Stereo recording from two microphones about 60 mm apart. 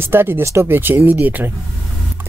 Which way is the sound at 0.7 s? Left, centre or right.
Right.